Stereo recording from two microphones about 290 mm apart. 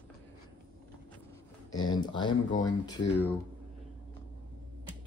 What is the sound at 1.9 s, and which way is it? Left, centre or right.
Speech, centre.